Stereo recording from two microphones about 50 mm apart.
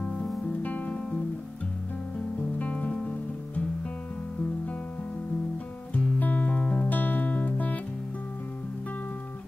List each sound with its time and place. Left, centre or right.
0.5 s music: left
2.1 s music: left
5.9 s music: left